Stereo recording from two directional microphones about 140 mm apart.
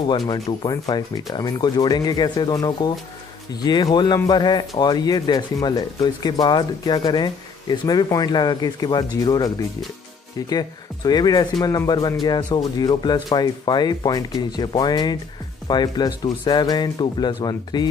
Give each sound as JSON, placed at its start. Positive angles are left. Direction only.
{"t": 0.3, "sound": "speech", "side_deg": 30}